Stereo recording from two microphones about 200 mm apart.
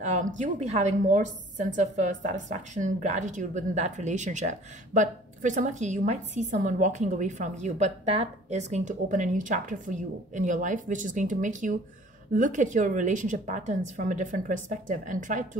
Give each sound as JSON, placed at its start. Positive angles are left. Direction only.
{"t": 0.0, "sound": "a woman's voice", "side_deg": -35}